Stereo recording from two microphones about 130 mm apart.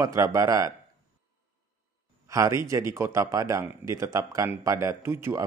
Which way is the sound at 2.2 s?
25° right (ahead or behind).